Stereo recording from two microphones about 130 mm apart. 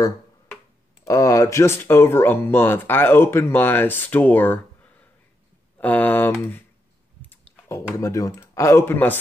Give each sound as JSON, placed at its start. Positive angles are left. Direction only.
{"t": 1.0, "sound": "speech", "side_deg": 25}